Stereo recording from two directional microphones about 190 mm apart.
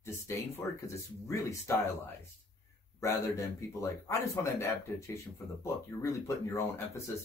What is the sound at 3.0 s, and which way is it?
Speech, 15° left (ahead or behind).